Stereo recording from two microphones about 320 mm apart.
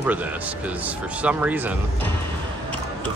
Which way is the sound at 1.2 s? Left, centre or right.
Centre.